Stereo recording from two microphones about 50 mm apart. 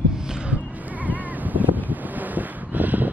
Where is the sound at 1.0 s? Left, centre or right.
Right.